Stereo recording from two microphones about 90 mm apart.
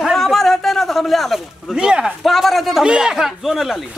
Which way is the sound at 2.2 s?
Centre (ahead or behind).